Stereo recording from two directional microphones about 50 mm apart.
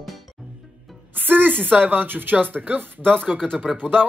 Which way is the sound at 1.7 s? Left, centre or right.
Right.